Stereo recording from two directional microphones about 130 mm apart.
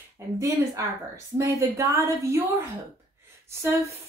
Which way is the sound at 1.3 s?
25° right (ahead or behind).